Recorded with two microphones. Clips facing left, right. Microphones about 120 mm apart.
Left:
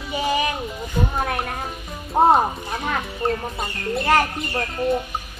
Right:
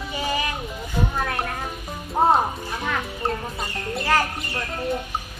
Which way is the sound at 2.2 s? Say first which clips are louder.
Left 3 dB; 25° left (ahead or behind).